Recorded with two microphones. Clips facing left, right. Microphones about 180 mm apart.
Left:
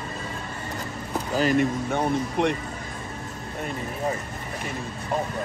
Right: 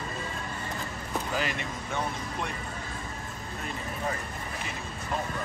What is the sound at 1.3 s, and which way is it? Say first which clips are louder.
Speech: left 15 dB; 40° left (ahead or behind).